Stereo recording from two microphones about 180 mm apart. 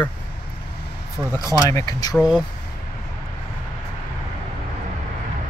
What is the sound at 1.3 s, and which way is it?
Speech, 15° left (ahead or behind).